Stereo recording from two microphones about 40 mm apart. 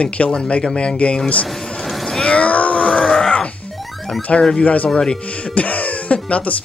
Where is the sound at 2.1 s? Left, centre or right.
Left.